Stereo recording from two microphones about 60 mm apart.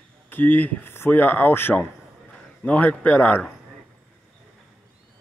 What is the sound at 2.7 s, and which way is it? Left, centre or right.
Speech, left.